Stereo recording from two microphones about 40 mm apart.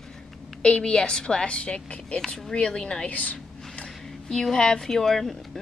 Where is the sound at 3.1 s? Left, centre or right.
Left.